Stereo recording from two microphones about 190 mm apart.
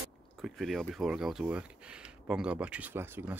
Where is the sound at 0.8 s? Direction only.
5° right (ahead or behind).